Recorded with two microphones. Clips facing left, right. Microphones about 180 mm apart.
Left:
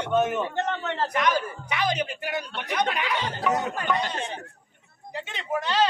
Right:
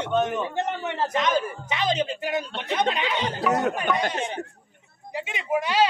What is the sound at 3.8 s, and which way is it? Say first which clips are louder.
Speech: right 2 dB; 15° right (ahead or behind).